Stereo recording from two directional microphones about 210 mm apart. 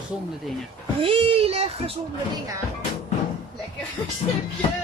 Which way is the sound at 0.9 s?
25° right (ahead or behind).